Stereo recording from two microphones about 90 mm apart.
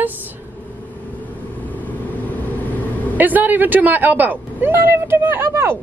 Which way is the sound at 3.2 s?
20° right (ahead or behind).